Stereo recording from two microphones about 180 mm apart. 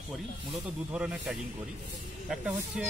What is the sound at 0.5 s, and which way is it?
Speech, 5° right (ahead or behind).